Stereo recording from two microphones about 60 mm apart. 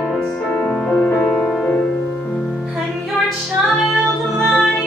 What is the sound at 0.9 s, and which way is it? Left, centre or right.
Music, centre.